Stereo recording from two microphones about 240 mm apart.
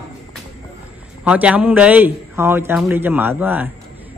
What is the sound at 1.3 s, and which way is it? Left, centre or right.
A man's voice, centre.